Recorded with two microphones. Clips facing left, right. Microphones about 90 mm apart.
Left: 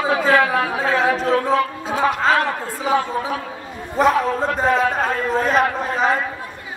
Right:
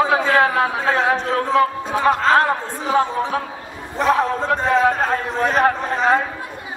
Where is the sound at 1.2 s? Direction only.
40° left (ahead or behind).